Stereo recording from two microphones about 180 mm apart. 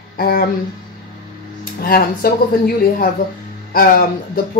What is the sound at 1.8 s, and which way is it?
Speech, 55° left (ahead or behind).